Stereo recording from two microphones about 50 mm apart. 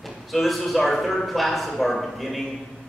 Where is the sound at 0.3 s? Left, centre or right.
Centre.